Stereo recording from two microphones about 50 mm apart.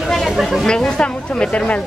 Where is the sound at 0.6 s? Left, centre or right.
Centre.